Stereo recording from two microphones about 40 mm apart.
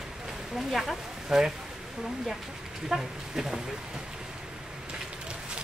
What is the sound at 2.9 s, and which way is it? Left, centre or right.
Speech, centre.